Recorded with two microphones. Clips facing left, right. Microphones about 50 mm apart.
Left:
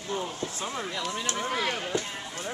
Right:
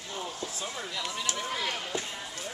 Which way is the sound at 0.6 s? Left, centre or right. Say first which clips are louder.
Left 4 dB; left.